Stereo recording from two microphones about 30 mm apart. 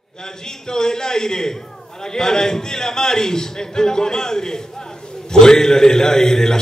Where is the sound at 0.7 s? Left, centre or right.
Left.